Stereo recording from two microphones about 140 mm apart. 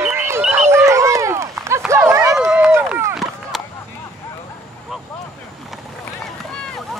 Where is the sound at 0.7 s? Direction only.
20° right (ahead or behind).